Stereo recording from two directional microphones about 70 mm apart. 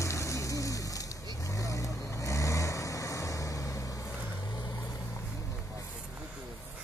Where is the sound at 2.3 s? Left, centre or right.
Left.